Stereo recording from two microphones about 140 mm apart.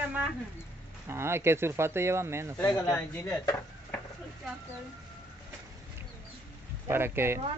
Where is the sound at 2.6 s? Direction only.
15° left (ahead or behind).